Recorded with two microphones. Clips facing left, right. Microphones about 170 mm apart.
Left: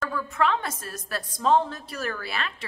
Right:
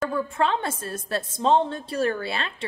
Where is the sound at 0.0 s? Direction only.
25° right (ahead or behind).